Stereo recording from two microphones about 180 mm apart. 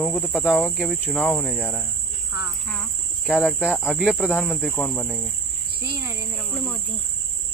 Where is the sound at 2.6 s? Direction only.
5° left (ahead or behind).